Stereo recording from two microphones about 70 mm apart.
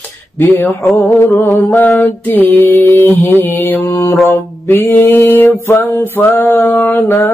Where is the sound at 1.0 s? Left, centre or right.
Left.